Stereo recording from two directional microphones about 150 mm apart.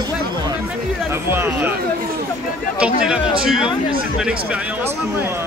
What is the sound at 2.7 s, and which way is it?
Speech, 5° right (ahead or behind).